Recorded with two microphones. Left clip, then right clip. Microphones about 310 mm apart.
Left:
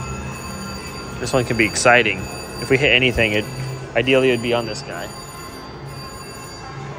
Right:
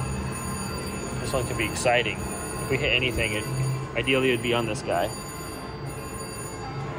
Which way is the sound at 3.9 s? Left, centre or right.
Centre.